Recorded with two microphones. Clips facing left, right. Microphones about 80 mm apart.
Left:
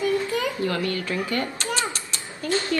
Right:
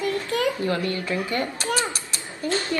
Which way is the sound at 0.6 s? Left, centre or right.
Right.